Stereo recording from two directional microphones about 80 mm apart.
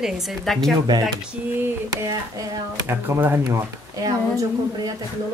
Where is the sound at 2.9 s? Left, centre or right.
Right.